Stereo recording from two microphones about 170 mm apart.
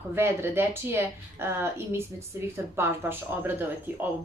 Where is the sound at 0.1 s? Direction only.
15° right (ahead or behind).